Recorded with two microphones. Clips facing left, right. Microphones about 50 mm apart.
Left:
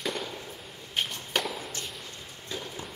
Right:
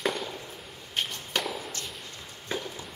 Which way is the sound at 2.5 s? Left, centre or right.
Right.